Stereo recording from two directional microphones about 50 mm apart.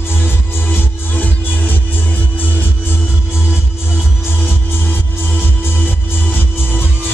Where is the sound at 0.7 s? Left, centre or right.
Left.